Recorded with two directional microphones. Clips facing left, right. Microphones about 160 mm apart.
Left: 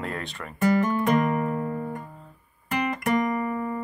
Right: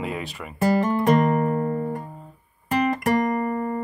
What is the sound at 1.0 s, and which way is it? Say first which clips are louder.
Music: right 4 dB; 50° right (ahead or behind).